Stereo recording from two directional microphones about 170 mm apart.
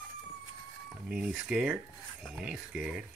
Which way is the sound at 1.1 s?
5° right (ahead or behind).